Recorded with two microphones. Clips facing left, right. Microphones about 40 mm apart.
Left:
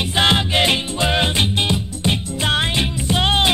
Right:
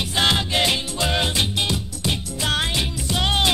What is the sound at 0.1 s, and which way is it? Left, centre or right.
Music, left.